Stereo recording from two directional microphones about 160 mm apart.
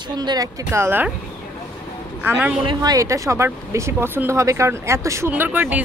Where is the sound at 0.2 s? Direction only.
25° right (ahead or behind).